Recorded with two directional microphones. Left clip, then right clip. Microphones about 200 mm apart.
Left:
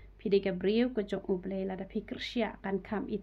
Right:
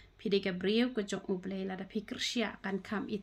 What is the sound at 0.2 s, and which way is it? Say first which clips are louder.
Speech: left 3 dB; 20° right (ahead or behind).